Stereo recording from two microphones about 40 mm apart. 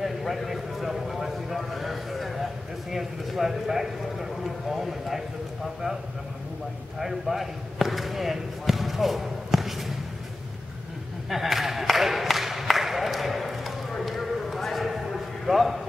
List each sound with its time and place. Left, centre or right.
0.0 s a man's voice: centre
7.0 s speech: centre
11.2 s a sound: centre